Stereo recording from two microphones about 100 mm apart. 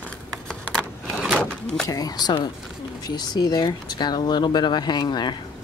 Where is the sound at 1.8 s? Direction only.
40° left (ahead or behind).